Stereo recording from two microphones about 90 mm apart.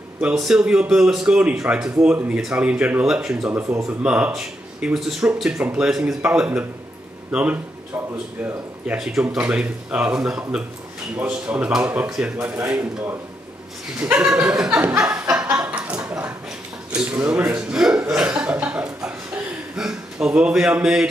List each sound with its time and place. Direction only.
0.3 s speech: 5° right (ahead or behind)
3.6 s speech: 35° right (ahead or behind)
4.0 s speech: 15° right (ahead or behind)
8.8 s speech: 10° right (ahead or behind)
15.1 s snicker: 15° right (ahead or behind)
15.5 s a sound: 15° right (ahead or behind)
17.4 s chuckle: 15° right (ahead or behind)
19.7 s a sound: 5° right (ahead or behind)
20.8 s speech: 10° right (ahead or behind)